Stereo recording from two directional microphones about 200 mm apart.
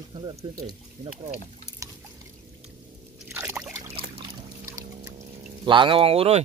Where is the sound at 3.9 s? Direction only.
25° right (ahead or behind).